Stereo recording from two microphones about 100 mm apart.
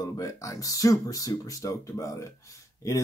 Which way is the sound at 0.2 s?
35° left (ahead or behind).